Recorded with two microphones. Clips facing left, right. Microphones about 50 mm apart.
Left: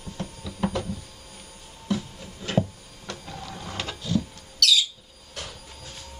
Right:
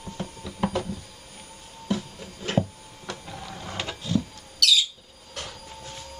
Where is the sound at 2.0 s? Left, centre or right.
Centre.